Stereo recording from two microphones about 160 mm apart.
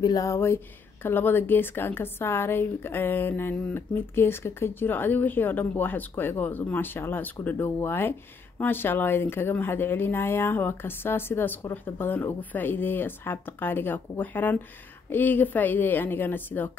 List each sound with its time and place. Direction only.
0.0 s a woman's voice: 20° left (ahead or behind)